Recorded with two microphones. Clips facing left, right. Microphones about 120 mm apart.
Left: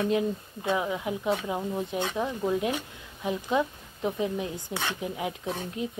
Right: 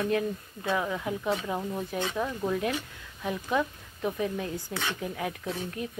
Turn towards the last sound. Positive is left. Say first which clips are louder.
# left 2 dB
turn(degrees=20)  # may be behind; listen again after turning